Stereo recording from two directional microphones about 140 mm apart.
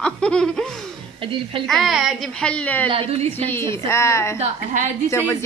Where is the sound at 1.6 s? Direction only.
Centre (ahead or behind).